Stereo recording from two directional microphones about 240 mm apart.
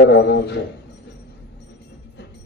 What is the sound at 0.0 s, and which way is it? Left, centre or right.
Speech, left.